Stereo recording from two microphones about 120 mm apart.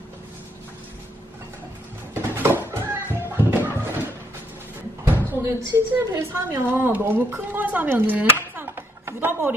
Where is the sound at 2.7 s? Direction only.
20° right (ahead or behind).